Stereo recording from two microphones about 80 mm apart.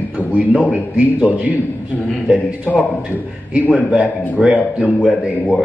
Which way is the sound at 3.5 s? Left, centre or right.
Centre.